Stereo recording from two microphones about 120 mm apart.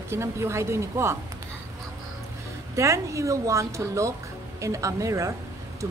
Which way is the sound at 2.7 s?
25° right (ahead or behind).